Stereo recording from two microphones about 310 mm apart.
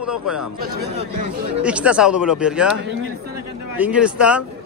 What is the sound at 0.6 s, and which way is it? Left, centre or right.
Speech, right.